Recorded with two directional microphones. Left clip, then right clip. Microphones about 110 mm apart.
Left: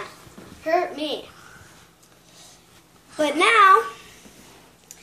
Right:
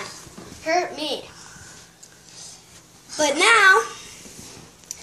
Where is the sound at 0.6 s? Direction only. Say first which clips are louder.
Even; 20° left (ahead or behind).